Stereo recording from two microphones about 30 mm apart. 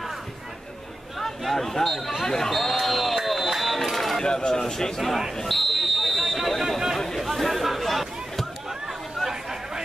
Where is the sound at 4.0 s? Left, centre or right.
Centre.